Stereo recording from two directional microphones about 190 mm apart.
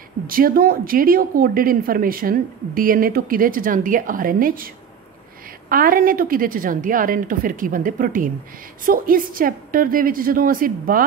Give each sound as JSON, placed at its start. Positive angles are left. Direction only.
{"t": 0.3, "sound": "speech", "side_deg": -50}
{"t": 5.7, "sound": "speech", "side_deg": -50}